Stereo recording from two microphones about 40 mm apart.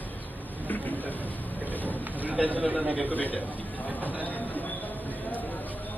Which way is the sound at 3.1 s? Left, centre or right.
Left.